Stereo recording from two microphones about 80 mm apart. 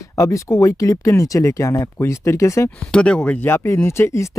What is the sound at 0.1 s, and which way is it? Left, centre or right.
Speech, left.